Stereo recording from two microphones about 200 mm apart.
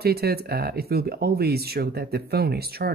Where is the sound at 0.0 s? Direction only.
50° right (ahead or behind).